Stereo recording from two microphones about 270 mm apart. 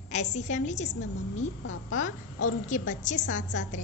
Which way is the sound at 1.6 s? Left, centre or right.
Left.